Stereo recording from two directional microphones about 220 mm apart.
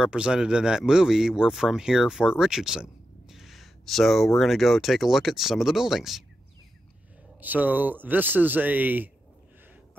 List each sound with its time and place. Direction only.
0.0 s speech: 5° right (ahead or behind)
7.3 s speech: 10° right (ahead or behind)